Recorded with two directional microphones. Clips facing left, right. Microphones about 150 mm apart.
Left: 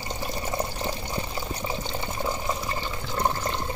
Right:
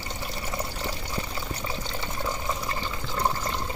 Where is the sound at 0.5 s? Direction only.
25° left (ahead or behind).